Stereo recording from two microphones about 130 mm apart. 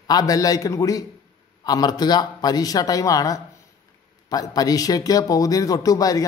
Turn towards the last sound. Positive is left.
turn(degrees=25)  # may be behind; listen again after turning